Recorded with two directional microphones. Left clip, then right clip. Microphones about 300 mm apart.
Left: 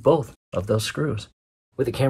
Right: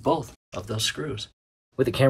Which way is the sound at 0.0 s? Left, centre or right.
Centre.